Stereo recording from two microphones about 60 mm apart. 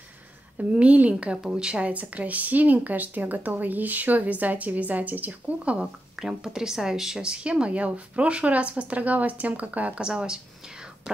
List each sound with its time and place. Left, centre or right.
0.6 s speech: right
5.8 s speech: centre
10.0 s speech: centre